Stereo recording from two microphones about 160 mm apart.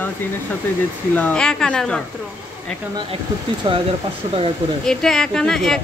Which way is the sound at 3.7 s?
30° right (ahead or behind).